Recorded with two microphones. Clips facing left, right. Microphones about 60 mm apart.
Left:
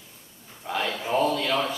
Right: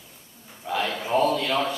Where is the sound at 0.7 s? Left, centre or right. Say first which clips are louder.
Right 2 dB; centre.